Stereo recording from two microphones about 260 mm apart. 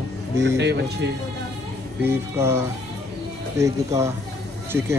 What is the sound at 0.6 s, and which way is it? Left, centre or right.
Speech, right.